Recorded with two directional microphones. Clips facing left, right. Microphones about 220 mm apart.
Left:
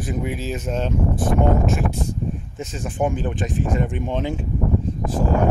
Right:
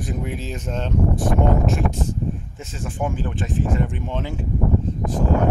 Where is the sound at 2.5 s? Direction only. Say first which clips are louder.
Left 3 dB; 20° left (ahead or behind).